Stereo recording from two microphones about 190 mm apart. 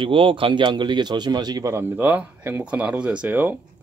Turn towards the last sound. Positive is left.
turn(degrees=-10)  # may be behind; listen again after turning